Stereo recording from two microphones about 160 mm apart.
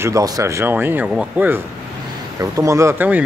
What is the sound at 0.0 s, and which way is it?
Speech, 20° right (ahead or behind).